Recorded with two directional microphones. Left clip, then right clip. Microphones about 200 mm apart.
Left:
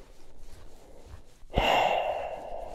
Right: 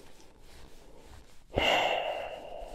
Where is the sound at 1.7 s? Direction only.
50° left (ahead or behind).